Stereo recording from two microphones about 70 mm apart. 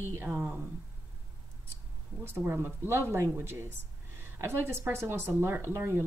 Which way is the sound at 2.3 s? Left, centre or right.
Right.